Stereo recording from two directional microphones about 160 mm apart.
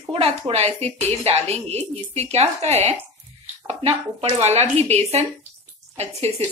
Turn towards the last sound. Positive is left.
turn(degrees=-40)  # may be behind; listen again after turning